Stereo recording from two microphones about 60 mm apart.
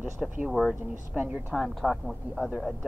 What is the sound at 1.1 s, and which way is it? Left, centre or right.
Speech, right.